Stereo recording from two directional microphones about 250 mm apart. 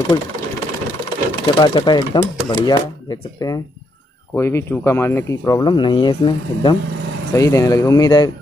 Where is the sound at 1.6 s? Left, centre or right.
Centre.